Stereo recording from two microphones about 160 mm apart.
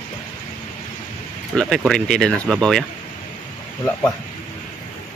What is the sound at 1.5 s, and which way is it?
Speech, 5° right (ahead or behind).